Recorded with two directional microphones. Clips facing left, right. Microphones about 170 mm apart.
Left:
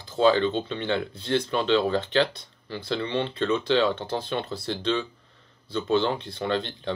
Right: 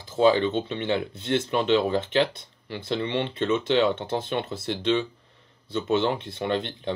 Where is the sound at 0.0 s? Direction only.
Centre (ahead or behind).